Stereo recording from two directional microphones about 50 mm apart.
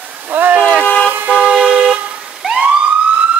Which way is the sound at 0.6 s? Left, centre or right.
Right.